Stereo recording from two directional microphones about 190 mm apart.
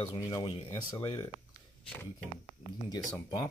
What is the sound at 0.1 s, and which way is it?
Speech, 20° left (ahead or behind).